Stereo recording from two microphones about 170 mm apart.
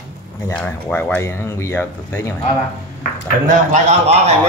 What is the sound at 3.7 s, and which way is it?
Speech, 40° right (ahead or behind).